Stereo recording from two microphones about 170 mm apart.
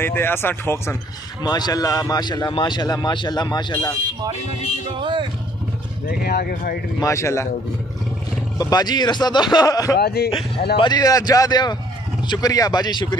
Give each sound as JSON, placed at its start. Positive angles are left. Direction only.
{"t": 0.0, "sound": "a man's voice", "side_deg": 15}
{"t": 5.0, "sound": "speech", "side_deg": -30}
{"t": 6.0, "sound": "speech", "side_deg": 60}
{"t": 7.0, "sound": "speech", "side_deg": 15}
{"t": 8.5, "sound": "a man's voice", "side_deg": 20}
{"t": 9.9, "sound": "speech", "side_deg": 70}
{"t": 10.8, "sound": "a man's voice", "side_deg": 25}